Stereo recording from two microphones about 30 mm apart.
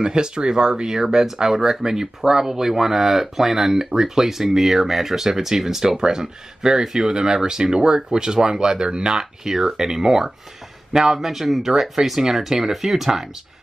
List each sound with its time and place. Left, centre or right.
0.0 s speech: right
1.1 s speech: centre